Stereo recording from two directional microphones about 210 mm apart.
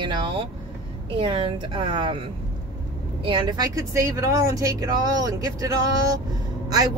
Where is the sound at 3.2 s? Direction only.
25° right (ahead or behind).